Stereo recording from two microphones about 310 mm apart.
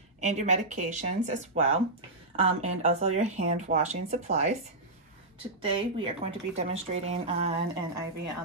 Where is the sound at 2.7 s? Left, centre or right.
Right.